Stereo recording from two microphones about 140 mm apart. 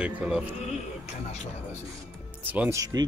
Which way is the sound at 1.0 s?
50° left (ahead or behind).